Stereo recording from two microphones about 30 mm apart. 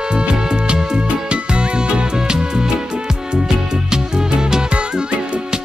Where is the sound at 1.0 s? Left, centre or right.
Right.